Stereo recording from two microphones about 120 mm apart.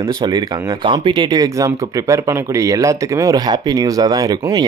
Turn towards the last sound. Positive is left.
turn(degrees=-35)  # may be behind; listen again after turning